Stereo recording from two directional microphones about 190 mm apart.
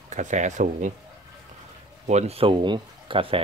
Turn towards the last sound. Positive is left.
turn(degrees=-25)  # may be behind; listen again after turning